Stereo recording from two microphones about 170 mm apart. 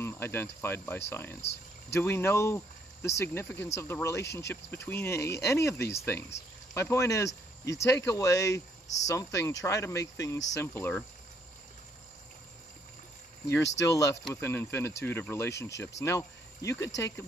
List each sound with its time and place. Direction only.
0.0 s speech: 15° left (ahead or behind)
13.7 s speech: 20° left (ahead or behind)